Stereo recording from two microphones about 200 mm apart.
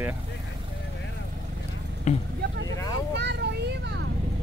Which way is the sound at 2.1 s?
35° left (ahead or behind).